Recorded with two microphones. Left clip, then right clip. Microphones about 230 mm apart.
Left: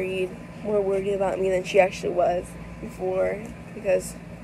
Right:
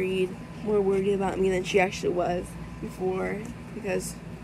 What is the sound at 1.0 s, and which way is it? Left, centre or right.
Speech, right.